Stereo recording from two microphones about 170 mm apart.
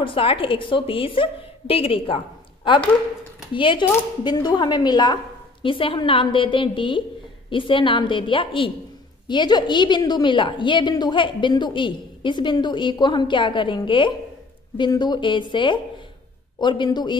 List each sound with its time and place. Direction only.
0.0 s a woman's voice: 30° left (ahead or behind)